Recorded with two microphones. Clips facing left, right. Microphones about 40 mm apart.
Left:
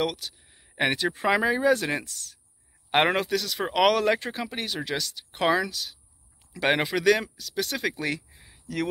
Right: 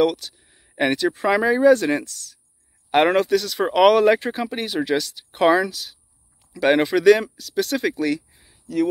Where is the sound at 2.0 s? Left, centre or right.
Left.